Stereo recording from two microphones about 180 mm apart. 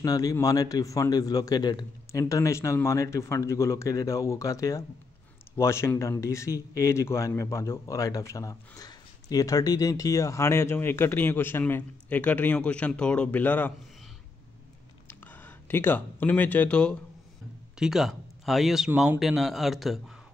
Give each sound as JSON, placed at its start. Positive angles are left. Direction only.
{"t": 0.0, "sound": "speech", "side_deg": 20}
{"t": 15.0, "sound": "a man's voice", "side_deg": 10}